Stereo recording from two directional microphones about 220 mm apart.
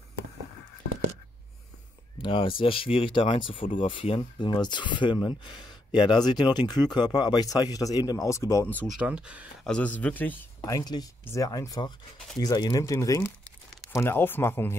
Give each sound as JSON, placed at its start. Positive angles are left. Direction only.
{"t": 2.1, "sound": "speech", "side_deg": 20}
{"t": 9.8, "sound": "speech", "side_deg": 5}